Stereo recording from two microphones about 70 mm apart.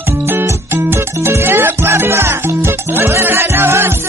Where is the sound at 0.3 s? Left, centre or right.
Right.